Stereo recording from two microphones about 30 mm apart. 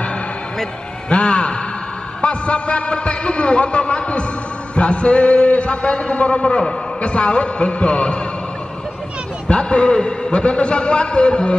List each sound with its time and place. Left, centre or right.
1.0 s a man's voice: left
6.1 s a man's voice: left
9.5 s a man's voice: left